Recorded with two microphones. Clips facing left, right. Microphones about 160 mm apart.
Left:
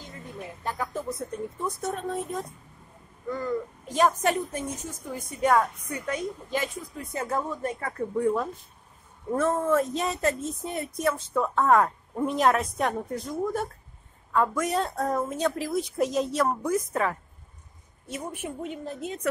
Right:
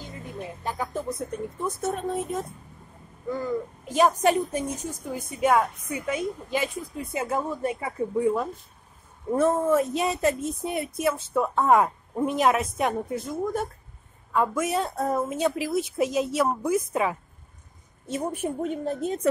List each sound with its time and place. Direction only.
1.6 s a woman's voice: 5° right (ahead or behind)
18.2 s a woman's voice: 40° right (ahead or behind)